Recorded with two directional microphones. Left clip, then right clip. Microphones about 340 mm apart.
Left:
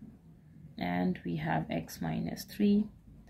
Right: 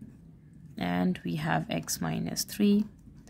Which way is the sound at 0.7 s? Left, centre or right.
Right.